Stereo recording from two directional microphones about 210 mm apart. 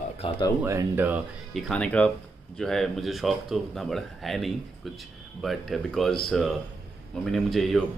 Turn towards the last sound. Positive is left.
turn(degrees=0)  # may be behind; listen again after turning